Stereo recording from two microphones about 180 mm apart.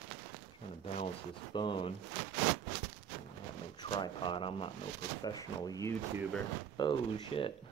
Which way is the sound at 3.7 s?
25° left (ahead or behind).